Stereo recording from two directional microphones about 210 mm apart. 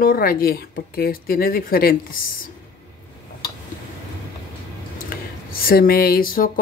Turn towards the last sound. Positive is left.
turn(degrees=45)  # may be behind; listen again after turning